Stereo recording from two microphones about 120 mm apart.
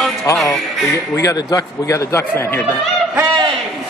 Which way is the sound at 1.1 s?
30° left (ahead or behind).